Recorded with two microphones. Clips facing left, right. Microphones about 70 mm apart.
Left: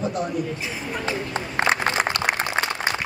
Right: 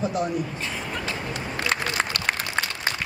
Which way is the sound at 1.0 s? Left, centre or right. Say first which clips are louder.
Left 3 dB; left.